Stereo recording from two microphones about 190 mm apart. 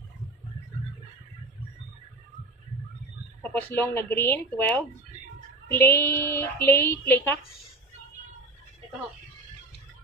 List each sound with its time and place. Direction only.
3.4 s a woman's voice: 10° left (ahead or behind)